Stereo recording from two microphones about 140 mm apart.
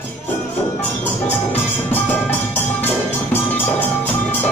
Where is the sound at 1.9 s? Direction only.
15° left (ahead or behind).